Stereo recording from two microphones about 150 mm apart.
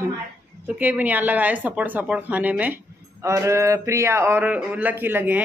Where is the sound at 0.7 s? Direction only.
10° right (ahead or behind).